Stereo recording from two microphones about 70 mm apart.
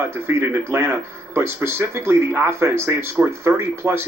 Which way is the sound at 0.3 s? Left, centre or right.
Right.